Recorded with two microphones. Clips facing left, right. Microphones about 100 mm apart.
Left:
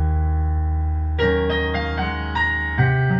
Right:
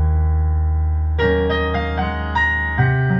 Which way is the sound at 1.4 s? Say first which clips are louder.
Right 2 dB; 30° right (ahead or behind).